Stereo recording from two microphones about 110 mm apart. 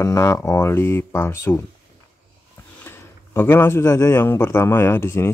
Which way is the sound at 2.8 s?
20° left (ahead or behind).